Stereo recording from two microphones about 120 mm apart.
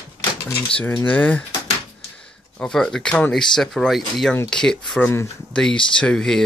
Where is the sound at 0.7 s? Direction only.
10° left (ahead or behind).